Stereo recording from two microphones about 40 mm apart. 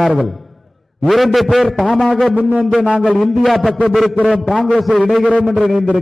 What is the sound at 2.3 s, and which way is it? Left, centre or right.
Speech, right.